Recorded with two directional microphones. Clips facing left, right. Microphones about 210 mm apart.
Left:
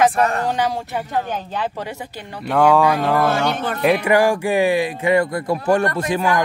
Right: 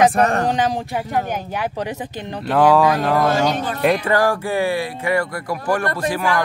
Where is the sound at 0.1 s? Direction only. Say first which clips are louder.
Right 2 dB; 45° right (ahead or behind).